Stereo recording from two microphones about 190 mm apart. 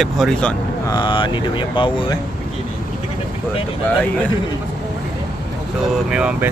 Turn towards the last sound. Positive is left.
turn(degrees=-5)  # may be behind; listen again after turning